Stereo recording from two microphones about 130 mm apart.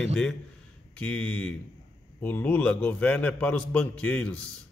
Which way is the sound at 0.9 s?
10° left (ahead or behind).